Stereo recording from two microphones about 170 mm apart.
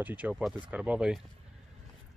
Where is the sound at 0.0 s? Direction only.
10° right (ahead or behind).